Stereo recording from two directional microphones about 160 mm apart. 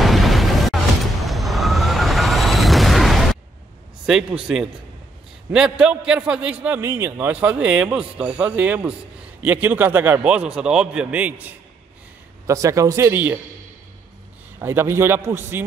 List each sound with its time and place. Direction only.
0.0 s music: centre (ahead or behind)
1.2 s vehicle: centre (ahead or behind)
4.0 s a man's voice: 5° right (ahead or behind)
14.6 s a man's voice: 15° right (ahead or behind)